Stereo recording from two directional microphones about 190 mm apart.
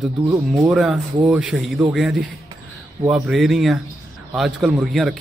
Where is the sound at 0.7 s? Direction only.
Centre (ahead or behind).